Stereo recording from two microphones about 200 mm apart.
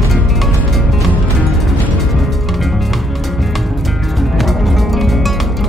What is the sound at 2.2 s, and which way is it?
Music, centre (ahead or behind).